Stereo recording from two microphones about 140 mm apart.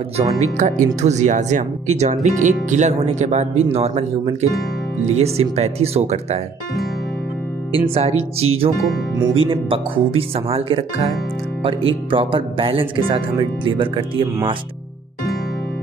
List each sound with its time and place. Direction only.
0.2 s speech: 60° right (ahead or behind)
7.9 s speech: 45° right (ahead or behind)